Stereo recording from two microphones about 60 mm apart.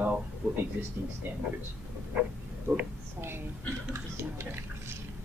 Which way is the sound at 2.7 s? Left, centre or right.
Right.